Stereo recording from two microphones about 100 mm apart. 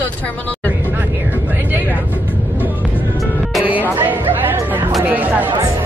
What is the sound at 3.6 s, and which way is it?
Music, 20° right (ahead or behind).